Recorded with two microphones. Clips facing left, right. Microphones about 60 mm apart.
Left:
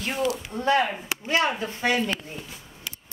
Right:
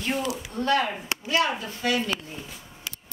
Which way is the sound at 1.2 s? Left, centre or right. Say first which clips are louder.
Left 1 dB; left.